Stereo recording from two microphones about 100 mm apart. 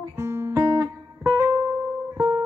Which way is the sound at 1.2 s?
30° right (ahead or behind).